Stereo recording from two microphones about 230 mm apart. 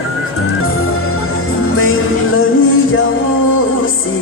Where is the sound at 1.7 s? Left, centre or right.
Left.